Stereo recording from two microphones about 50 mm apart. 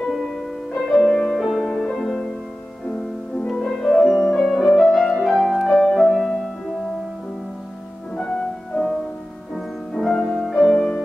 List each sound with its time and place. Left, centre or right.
0.7 s music: centre
2.8 s music: centre
8.7 s music: centre
9.9 s music: centre
10.2 s music: centre
10.7 s music: centre